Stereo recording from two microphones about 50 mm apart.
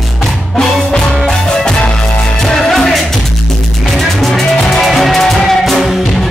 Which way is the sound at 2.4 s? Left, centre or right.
Centre.